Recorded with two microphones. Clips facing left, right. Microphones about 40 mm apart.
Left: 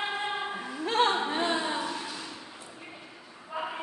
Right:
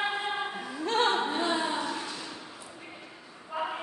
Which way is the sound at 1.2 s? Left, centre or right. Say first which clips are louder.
Even; left.